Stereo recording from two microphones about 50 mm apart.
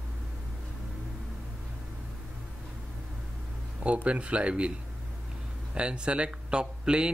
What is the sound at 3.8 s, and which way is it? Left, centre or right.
Speech, right.